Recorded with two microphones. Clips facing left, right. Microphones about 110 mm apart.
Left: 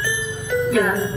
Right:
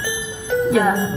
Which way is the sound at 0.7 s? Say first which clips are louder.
Right 3 dB; 20° right (ahead or behind).